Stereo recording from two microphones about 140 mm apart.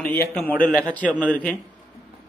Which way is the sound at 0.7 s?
10° left (ahead or behind).